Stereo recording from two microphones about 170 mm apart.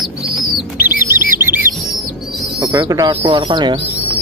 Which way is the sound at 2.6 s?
20° right (ahead or behind).